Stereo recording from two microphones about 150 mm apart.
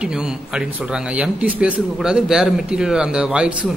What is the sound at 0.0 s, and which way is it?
Speech, 5° right (ahead or behind).